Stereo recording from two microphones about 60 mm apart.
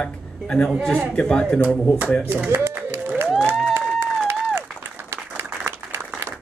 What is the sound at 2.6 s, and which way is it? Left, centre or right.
Music, right.